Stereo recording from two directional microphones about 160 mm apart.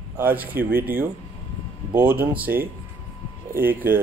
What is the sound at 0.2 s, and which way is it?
Speech, 10° right (ahead or behind).